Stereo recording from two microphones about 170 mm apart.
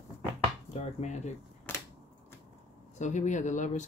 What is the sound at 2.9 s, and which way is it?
Speech, 45° left (ahead or behind).